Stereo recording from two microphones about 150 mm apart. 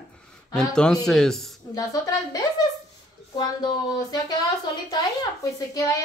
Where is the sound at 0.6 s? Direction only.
5° left (ahead or behind).